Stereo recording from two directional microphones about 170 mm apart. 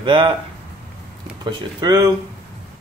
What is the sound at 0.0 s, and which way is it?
Speech, 30° right (ahead or behind).